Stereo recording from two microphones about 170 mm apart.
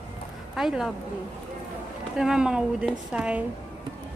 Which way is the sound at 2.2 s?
5° right (ahead or behind).